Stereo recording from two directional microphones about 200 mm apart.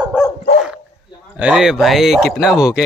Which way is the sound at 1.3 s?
5° right (ahead or behind).